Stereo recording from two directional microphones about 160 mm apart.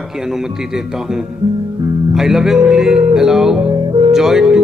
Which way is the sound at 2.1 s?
Centre (ahead or behind).